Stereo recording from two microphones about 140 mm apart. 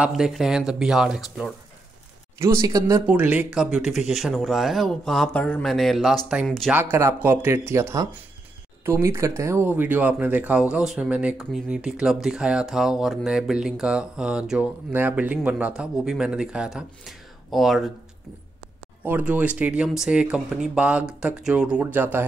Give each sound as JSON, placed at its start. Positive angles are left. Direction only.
{"t": 0.0, "sound": "speech", "side_deg": -5}
{"t": 2.3, "sound": "speech", "side_deg": -20}
{"t": 3.1, "sound": "speech", "side_deg": -10}
{"t": 6.7, "sound": "speech", "side_deg": -15}
{"t": 19.0, "sound": "speech", "side_deg": -10}